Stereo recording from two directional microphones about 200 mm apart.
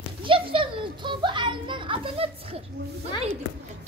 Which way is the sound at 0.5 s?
25° right (ahead or behind).